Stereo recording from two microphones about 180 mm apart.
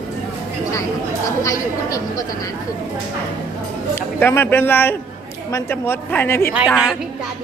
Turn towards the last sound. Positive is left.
turn(degrees=-5)  # may be behind; listen again after turning